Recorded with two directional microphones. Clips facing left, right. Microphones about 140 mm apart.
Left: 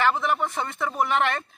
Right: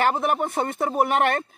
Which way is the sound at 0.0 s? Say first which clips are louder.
Right 2 dB; 50° right (ahead or behind).